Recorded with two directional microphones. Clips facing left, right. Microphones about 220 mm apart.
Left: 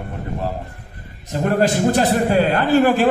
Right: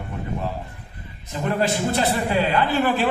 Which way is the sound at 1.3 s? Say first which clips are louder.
Left 5 dB; 45° left (ahead or behind).